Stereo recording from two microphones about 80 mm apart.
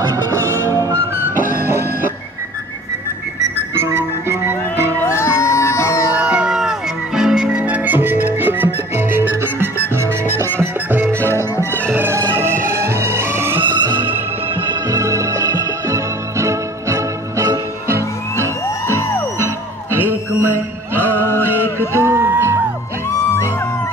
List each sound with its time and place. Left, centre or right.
0.1 s music: right
3.7 s music: right
5.0 s music: left
6.1 s music: centre; by 13.6 s right
13.6 s music: right
14.0 s music: right
14.9 s music: right
18.9 s music: left
19.3 s music: right
23.0 s music: left